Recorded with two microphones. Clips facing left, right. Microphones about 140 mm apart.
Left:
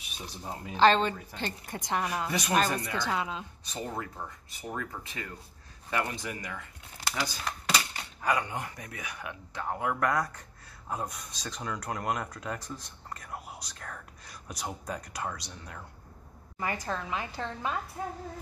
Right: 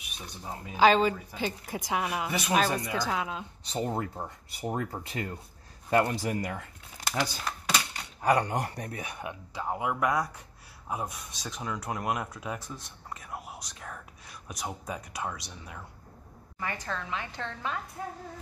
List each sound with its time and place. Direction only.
0.7 s speech: 5° right (ahead or behind)
3.6 s speech: 30° right (ahead or behind)
7.2 s typing: 5° left (ahead or behind)
8.2 s speech: 35° right (ahead or behind)
9.5 s speech: 10° right (ahead or behind)
16.5 s a woman's voice: 10° left (ahead or behind)